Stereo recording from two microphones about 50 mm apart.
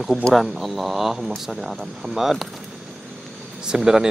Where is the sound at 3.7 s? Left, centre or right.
Centre.